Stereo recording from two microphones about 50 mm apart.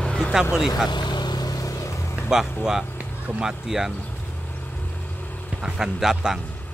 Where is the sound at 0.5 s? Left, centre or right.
Centre.